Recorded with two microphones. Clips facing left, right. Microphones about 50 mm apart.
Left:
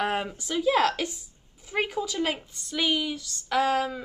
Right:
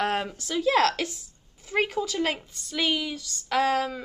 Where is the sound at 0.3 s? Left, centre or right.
Centre.